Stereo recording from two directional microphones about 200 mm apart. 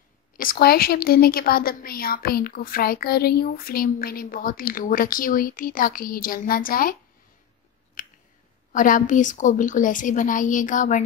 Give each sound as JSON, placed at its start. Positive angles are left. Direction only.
{"t": 0.4, "sound": "a woman's voice", "side_deg": 50}
{"t": 8.0, "sound": "a sound", "side_deg": 40}
{"t": 8.7, "sound": "a woman's voice", "side_deg": 40}